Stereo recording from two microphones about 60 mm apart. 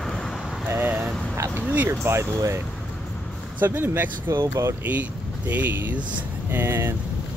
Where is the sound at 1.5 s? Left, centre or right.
Right.